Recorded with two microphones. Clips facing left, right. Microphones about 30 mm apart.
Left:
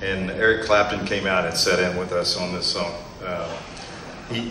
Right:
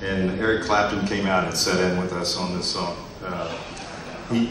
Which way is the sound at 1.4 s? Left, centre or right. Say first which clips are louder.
Left 1 dB; left.